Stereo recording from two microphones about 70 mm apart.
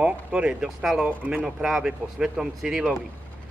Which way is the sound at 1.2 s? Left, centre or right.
Centre.